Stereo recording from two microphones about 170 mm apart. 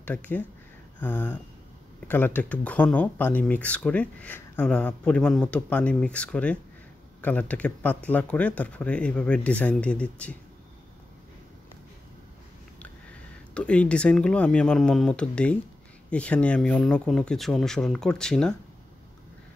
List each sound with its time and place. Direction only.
0.0 s speech: 10° left (ahead or behind)
13.6 s speech: 5° left (ahead or behind)